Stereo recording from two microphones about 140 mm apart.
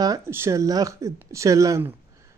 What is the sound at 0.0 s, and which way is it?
Speech, 20° right (ahead or behind).